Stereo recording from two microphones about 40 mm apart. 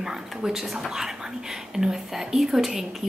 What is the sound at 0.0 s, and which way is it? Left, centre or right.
A woman's voice, centre.